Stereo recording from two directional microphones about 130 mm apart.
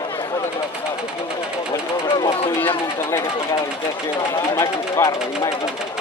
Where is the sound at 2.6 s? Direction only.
20° left (ahead or behind).